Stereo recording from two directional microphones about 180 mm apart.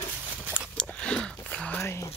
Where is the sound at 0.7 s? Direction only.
5° left (ahead or behind).